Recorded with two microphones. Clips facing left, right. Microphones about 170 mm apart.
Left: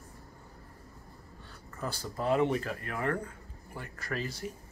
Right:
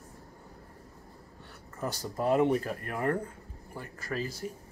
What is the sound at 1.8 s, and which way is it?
Speech, 20° right (ahead or behind).